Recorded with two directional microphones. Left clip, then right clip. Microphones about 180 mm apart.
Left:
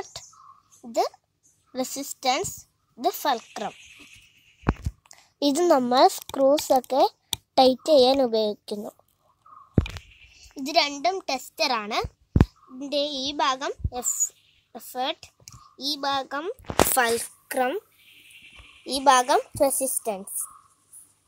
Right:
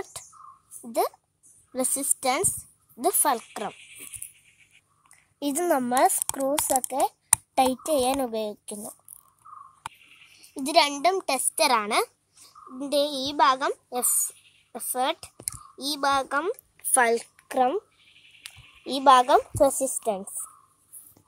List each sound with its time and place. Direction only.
0.0 s a sound: 5° right (ahead or behind)
0.8 s a woman's voice: centre (ahead or behind)
5.0 s a sound: 30° left (ahead or behind)
5.8 s speech: 20° left (ahead or behind)
7.5 s a child's voice: 35° left (ahead or behind)
10.5 s a child's voice: 20° right (ahead or behind)
18.9 s a woman's voice: 15° right (ahead or behind)
20.0 s a woman's voice: 25° right (ahead or behind)